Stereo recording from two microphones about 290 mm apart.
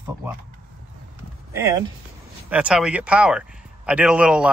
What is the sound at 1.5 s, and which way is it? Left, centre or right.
A man's voice, centre.